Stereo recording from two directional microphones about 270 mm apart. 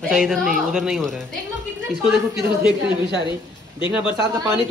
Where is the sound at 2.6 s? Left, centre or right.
Centre.